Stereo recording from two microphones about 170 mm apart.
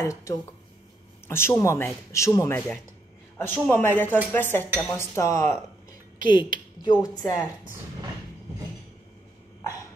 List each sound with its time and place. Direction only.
0.0 s a man's voice: 15° left (ahead or behind)
6.2 s a woman's voice: 55° right (ahead or behind)
6.8 s speech: 20° left (ahead or behind)